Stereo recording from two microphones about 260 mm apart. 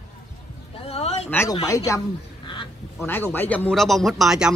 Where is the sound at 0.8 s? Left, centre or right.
Left.